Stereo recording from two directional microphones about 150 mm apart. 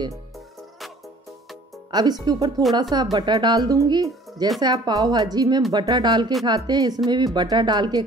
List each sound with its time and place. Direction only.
1.9 s speech: 30° right (ahead or behind)